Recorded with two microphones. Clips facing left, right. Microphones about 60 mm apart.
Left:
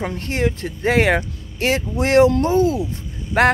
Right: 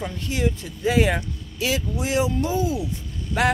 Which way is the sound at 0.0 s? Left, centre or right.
Left.